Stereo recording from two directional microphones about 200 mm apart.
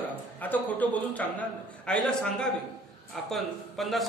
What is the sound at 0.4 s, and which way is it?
A man's voice, 10° left (ahead or behind).